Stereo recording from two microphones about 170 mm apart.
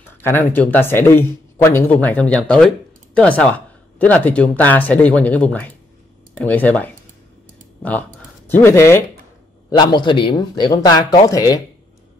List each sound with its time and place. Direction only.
0.1 s speech: 15° left (ahead or behind)
8.5 s speech: 15° left (ahead or behind)
9.7 s speech: 25° left (ahead or behind)